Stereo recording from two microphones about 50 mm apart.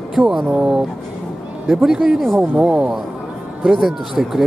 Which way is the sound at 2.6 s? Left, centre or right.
Right.